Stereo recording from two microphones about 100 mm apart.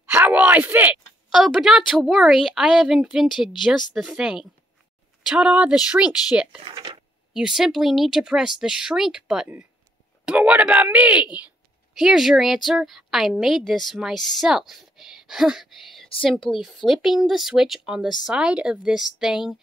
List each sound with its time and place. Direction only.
0.0 s speech: 20° right (ahead or behind)
1.3 s a woman's voice: 5° right (ahead or behind)